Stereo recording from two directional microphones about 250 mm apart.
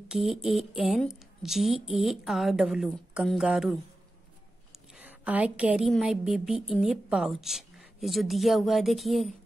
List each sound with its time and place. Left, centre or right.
0.1 s a woman's voice: centre